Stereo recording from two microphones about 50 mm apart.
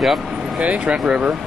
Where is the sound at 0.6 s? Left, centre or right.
Right.